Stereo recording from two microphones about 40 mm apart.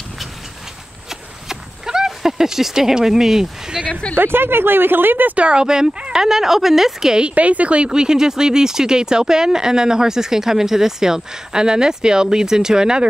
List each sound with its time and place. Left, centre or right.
1.5 s speech: centre
4.1 s speech: right
5.3 s speech: right; by 7.2 s centre
7.3 s speech: right; by 13.1 s centre